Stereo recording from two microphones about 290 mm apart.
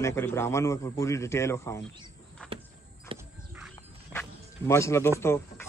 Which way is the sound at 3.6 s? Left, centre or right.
Centre.